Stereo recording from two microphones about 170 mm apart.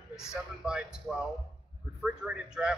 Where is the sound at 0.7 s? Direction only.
5° right (ahead or behind).